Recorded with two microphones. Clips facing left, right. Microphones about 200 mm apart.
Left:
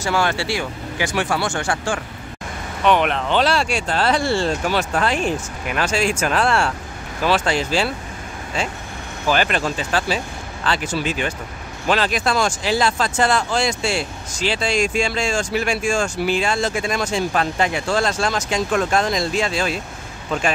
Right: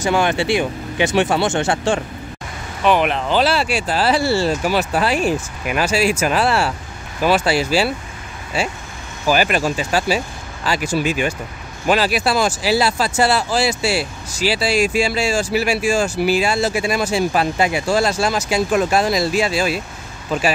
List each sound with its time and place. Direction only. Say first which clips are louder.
0.0 s speech: right 3 dB; 20° right (ahead or behind)
2.8 s speech: right 1 dB; 5° right (ahead or behind)